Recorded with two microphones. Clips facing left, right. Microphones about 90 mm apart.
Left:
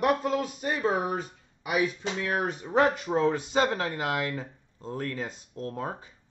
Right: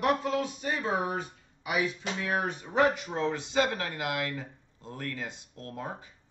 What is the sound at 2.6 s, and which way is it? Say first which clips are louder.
Speech: left 2 dB; 40° left (ahead or behind).